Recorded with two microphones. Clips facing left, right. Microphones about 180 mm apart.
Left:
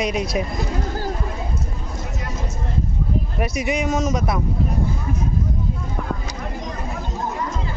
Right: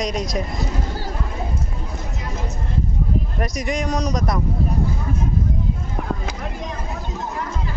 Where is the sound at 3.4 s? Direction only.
5° left (ahead or behind).